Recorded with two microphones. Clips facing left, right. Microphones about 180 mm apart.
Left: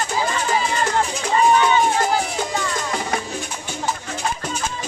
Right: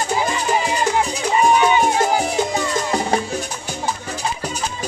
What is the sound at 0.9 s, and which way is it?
Music, 15° right (ahead or behind).